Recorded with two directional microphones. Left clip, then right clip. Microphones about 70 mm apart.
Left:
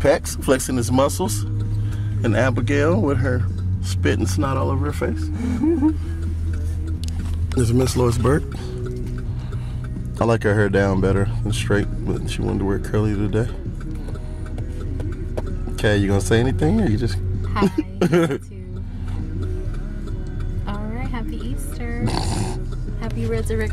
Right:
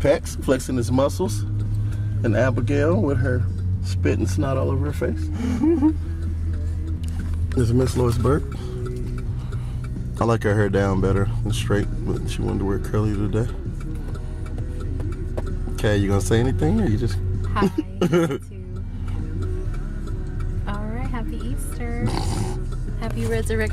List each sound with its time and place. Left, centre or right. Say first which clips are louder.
0.0 s speech: left 2 dB; left
5.4 s speech: even; centre
7.5 s speech: left 2 dB; left
10.1 s speech: left 2 dB; centre
15.3 s speech: left 3 dB; centre
20.8 s a sound: left 1 dB; centre
22.0 s dog: left 3 dB; left
23.3 s speech: even; right